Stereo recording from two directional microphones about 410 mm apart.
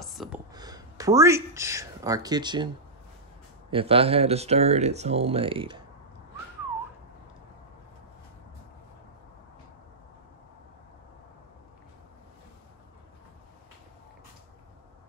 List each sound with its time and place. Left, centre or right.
0.0 s speech: centre
3.7 s speech: centre